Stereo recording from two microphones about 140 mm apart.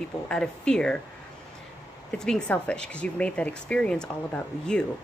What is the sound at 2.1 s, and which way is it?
Speech, 5° left (ahead or behind).